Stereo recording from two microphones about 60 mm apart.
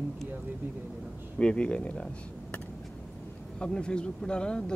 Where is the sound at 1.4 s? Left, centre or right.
Centre.